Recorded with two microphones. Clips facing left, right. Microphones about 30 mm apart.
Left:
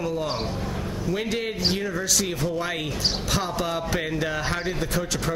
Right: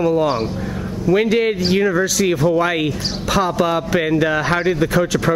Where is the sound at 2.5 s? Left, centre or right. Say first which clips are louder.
Right 11 dB; right.